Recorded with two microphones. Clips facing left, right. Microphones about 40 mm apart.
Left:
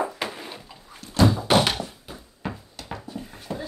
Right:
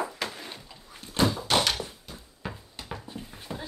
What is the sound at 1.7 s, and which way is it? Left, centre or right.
Thunk, centre.